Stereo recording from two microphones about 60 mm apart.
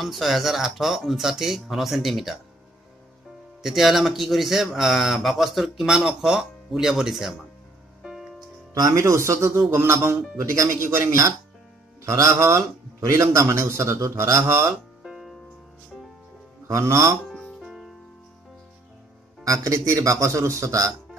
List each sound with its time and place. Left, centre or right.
0.0 s speech: centre
3.6 s speech: centre
8.1 s music: centre
8.7 s speech: right
9.0 s a man's voice: right
13.7 s speech: right
15.0 s music: centre
16.6 s a man's voice: right
17.6 s music: centre
19.4 s speech: right